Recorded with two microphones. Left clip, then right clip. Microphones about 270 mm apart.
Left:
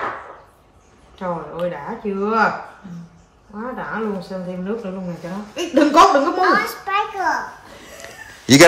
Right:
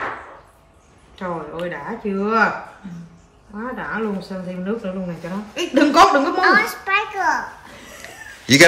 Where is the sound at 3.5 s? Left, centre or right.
Centre.